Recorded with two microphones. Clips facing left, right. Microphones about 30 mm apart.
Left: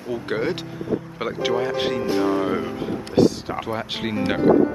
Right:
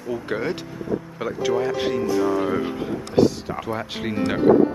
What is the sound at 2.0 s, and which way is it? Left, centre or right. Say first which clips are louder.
Speech: even; left.